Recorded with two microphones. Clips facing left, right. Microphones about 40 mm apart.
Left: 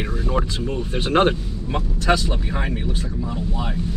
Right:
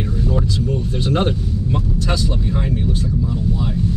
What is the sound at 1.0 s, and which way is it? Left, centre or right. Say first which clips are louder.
Speech: left 3 dB; left.